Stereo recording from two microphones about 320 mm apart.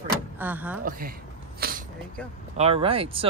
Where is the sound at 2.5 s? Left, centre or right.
Centre.